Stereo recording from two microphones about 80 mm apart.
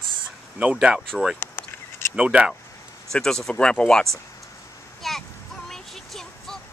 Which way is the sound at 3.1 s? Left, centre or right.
Centre.